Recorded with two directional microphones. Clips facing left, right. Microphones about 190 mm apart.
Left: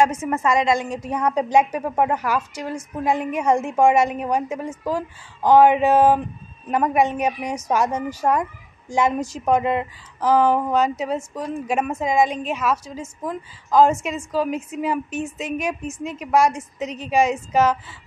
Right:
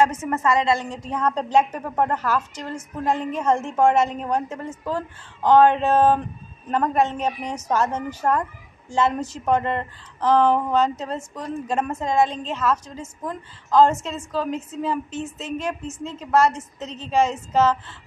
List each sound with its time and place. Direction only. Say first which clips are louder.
0.0 s a woman's voice: left 1 dB; 10° left (ahead or behind)